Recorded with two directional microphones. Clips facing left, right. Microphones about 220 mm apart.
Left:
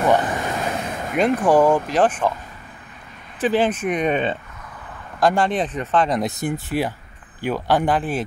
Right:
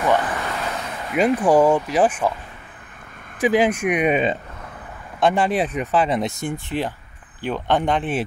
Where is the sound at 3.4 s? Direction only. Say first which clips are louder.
Right 1 dB; 10° right (ahead or behind).